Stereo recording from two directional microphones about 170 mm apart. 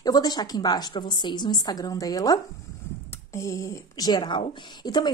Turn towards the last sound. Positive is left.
turn(degrees=25)  # may be behind; listen again after turning